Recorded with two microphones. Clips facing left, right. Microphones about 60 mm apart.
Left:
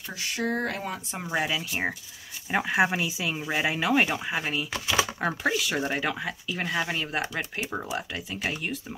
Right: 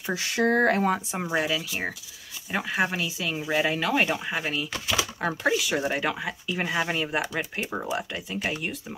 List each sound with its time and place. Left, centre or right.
0.4 s speech: right
0.7 s speech: right
1.3 s speech: centre